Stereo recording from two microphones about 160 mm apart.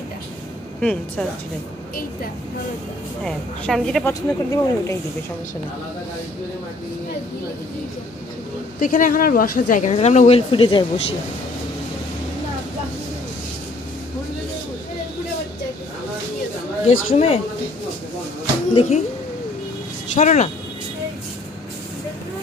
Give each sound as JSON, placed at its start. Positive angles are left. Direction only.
{"t": 0.7, "sound": "a woman's voice", "side_deg": 5}
{"t": 3.3, "sound": "a woman's voice", "side_deg": 5}
{"t": 4.1, "sound": "speech", "side_deg": 20}
{"t": 8.7, "sound": "speech", "side_deg": 55}
{"t": 9.9, "sound": "speech", "side_deg": 45}
{"t": 17.1, "sound": "speech", "side_deg": 40}
{"t": 18.7, "sound": "speech", "side_deg": 40}
{"t": 20.2, "sound": "speech", "side_deg": 50}